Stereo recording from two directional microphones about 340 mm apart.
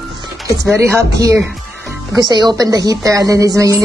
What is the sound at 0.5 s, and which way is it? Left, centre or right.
A woman's voice, centre.